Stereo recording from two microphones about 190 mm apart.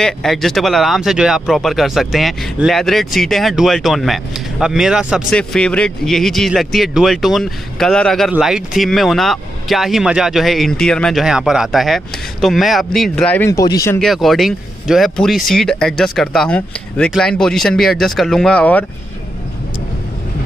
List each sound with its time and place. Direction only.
0.0 s speech: centre (ahead or behind); by 13.9 s 15° left (ahead or behind)
13.9 s speech: centre (ahead or behind)